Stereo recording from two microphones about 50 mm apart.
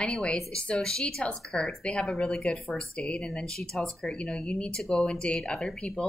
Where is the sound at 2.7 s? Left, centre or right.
Left.